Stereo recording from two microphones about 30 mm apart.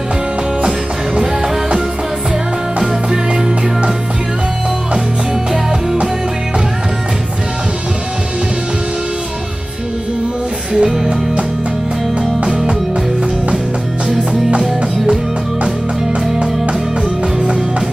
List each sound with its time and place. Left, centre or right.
10.7 s music: centre
17.4 s music: right